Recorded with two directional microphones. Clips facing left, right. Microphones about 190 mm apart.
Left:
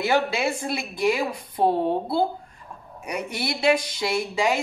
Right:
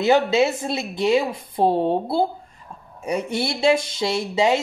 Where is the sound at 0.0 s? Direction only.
20° right (ahead or behind).